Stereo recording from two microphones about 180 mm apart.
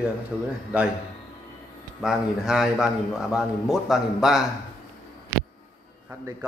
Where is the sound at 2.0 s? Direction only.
5° right (ahead or behind).